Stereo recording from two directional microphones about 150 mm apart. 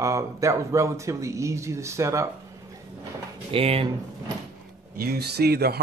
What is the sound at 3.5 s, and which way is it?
Speech, 40° right (ahead or behind).